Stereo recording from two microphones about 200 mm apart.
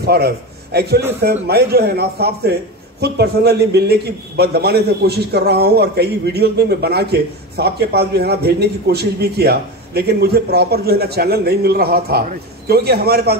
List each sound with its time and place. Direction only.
0.0 s a man's voice: 50° right (ahead or behind)